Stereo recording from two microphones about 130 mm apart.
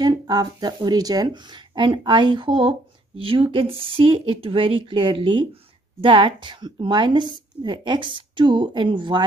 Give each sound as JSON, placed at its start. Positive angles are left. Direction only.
{"t": 0.0, "sound": "speech", "side_deg": -35}